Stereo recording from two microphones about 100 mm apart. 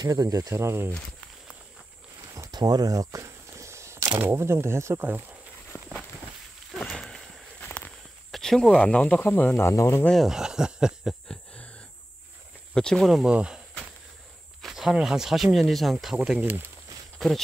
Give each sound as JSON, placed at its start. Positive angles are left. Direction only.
{"t": 0.0, "sound": "speech", "side_deg": -35}
{"t": 2.5, "sound": "a sound", "side_deg": -40}
{"t": 4.2, "sound": "speech", "side_deg": -25}
{"t": 5.7, "sound": "walk", "side_deg": -10}
{"t": 6.7, "sound": "walk", "side_deg": 5}
{"t": 8.3, "sound": "speech", "side_deg": 5}
{"t": 9.2, "sound": "speech", "side_deg": 20}
{"t": 10.1, "sound": "speech", "side_deg": -5}
{"t": 11.2, "sound": "a sound", "side_deg": 10}
{"t": 12.7, "sound": "speech", "side_deg": 5}
{"t": 16.4, "sound": "speech", "side_deg": -20}
{"t": 17.2, "sound": "speech", "side_deg": 0}